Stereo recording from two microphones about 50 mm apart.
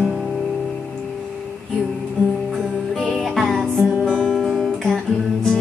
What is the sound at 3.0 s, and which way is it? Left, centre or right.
Music, centre.